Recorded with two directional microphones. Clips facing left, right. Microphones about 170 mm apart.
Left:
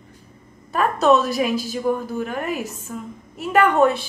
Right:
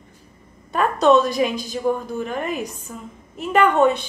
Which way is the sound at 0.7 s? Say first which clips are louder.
Right 1 dB; 5° left (ahead or behind).